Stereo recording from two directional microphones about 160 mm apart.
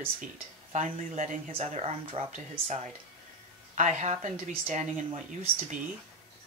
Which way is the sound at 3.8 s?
50° right (ahead or behind).